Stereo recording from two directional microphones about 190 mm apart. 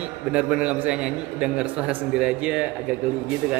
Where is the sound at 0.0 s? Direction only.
5° right (ahead or behind).